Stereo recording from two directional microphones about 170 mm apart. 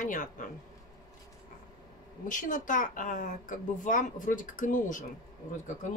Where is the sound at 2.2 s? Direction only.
50° left (ahead or behind).